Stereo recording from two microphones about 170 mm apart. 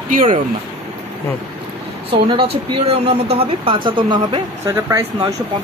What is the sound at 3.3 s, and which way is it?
Speech, 30° right (ahead or behind).